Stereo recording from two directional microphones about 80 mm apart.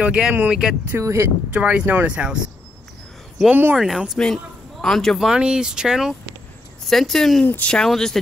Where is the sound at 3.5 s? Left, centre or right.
Right.